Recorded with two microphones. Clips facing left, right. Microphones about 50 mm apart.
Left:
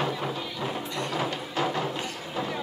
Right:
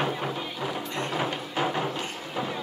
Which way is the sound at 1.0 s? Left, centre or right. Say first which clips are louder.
Right 1 dB; right.